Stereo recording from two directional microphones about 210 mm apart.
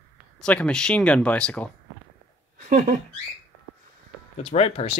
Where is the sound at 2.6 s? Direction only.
35° right (ahead or behind).